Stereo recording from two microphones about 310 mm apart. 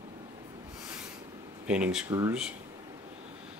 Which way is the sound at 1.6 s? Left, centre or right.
Centre.